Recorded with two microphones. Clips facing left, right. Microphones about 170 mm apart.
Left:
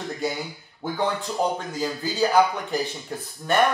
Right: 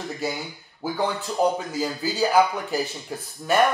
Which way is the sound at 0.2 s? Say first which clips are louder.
Left 2 dB; 5° right (ahead or behind).